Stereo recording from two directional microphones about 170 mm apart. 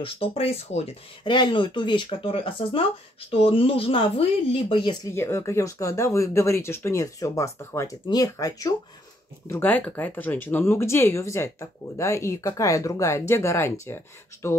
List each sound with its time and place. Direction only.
0.0 s speech: 35° left (ahead or behind)
5.0 s speech: 15° left (ahead or behind)
9.5 s speech: 10° left (ahead or behind)